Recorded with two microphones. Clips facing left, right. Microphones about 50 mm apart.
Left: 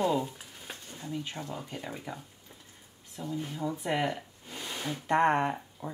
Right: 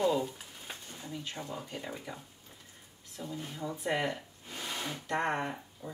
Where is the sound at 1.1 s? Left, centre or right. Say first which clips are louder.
Left 5 dB; centre.